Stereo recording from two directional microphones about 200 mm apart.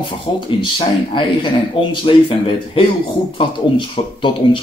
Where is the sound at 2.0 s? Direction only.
25° left (ahead or behind).